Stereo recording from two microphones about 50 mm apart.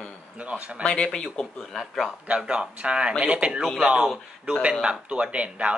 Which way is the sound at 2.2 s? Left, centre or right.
Right.